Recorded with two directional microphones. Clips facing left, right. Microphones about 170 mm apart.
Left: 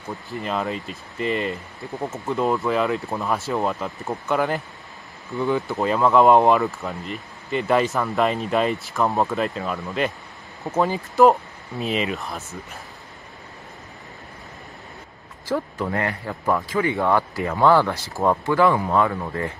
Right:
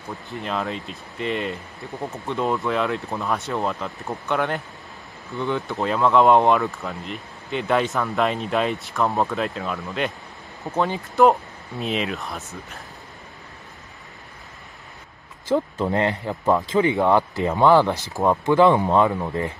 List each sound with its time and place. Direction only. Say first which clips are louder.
0.3 s speech: left 1 dB; centre (ahead or behind)
15.4 s speech: right 3 dB; 25° right (ahead or behind)